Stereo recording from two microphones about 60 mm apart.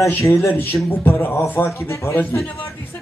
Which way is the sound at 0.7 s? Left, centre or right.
Left.